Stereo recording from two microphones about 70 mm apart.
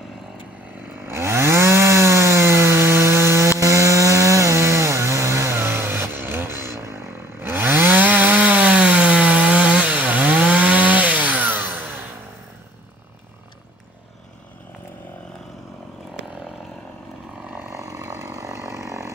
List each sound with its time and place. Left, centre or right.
1.0 s chainsaw: right
17.5 s a sound: right
17.7 s chainsaw: right